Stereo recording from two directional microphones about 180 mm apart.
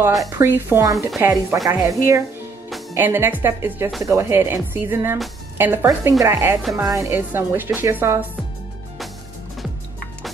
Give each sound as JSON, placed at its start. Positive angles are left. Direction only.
{"t": 0.4, "sound": "speech", "side_deg": -15}